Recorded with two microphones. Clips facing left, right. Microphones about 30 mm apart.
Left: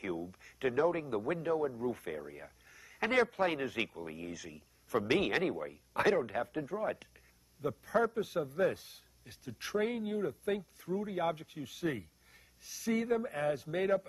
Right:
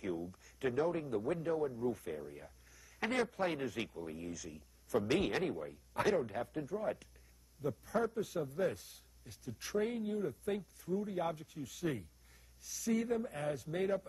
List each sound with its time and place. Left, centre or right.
0.0 s a sound: left
0.7 s a man's voice: centre; by 3.3 s left
3.3 s speech: left
4.9 s a man's voice: left
5.3 s speech: left
9.2 s speech: left
13.6 s speech: left